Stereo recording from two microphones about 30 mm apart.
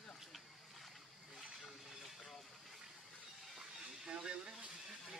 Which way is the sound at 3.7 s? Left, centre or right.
Right.